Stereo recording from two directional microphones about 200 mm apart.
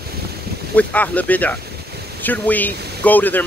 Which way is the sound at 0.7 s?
10° left (ahead or behind).